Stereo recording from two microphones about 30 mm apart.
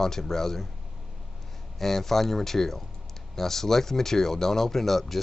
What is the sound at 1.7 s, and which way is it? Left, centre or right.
Speech, centre.